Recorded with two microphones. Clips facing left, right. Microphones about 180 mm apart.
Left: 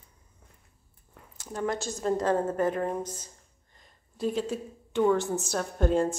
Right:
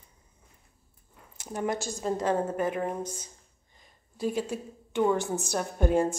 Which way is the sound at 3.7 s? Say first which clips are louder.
Right 1 dB; 5° right (ahead or behind).